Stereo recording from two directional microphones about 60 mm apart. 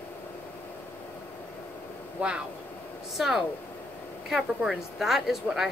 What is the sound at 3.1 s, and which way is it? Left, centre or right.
A woman's voice, centre.